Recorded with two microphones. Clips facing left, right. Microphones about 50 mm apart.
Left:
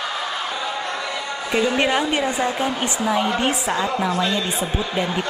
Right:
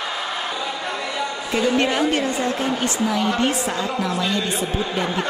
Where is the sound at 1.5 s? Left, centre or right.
Centre.